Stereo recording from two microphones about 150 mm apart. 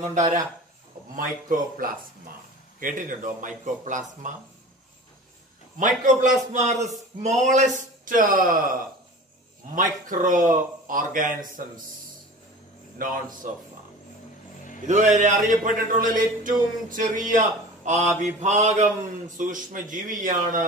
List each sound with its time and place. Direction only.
1.1 s a man's voice: 65° right (ahead or behind)
5.8 s a man's voice: 55° right (ahead or behind)
9.8 s a man's voice: 60° right (ahead or behind)
12.9 s speech: 70° right (ahead or behind)
14.6 s a sound: 60° left (ahead or behind)
14.9 s a man's voice: 50° right (ahead or behind)